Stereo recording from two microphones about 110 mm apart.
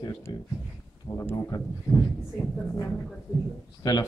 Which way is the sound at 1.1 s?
30° left (ahead or behind).